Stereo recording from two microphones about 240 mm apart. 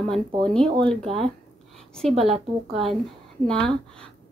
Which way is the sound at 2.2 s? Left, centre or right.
Right.